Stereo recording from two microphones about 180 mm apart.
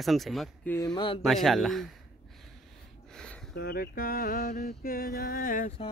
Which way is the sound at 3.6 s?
55° left (ahead or behind).